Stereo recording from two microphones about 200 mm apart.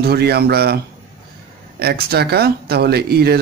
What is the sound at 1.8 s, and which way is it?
Speech, 50° right (ahead or behind).